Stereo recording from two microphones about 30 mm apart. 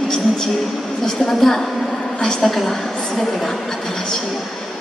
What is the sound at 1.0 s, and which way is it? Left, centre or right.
A woman's voice, centre.